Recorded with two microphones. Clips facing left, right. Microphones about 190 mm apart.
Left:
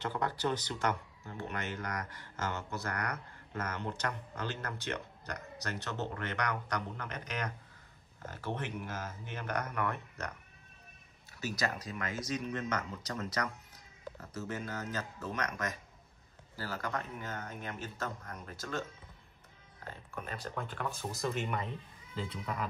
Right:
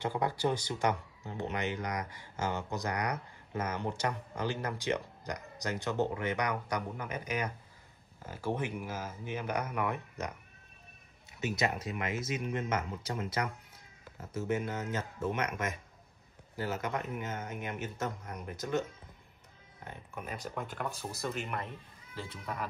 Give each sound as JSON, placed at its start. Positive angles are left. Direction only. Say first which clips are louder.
{"t": 0.0, "sound": "speech", "louder": "right 3 dB", "side_deg": -10}
{"t": 11.3, "sound": "speech", "louder": "right 3 dB", "side_deg": -25}